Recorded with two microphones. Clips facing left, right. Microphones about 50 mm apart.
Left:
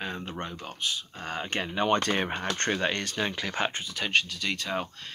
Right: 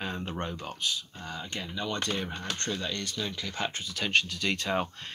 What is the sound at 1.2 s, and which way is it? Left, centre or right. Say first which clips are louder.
Speech: left 10 dB; left.